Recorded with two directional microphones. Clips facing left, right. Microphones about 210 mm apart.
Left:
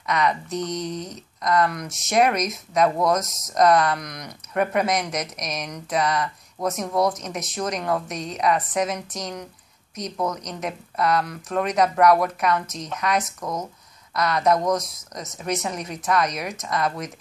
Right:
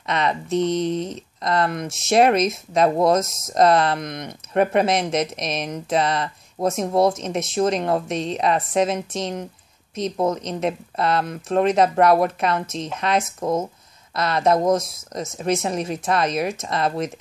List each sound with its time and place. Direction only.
0.0 s speech: 25° right (ahead or behind)